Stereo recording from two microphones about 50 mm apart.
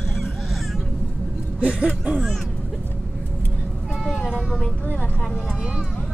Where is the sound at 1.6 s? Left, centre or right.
Right.